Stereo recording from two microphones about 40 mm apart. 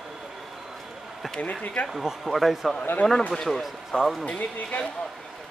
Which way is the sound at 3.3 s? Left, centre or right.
Centre.